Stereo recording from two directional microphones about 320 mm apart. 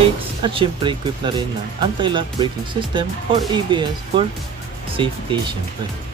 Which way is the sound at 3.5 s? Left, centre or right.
Centre.